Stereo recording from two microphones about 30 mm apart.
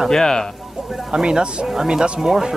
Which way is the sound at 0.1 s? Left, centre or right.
Centre.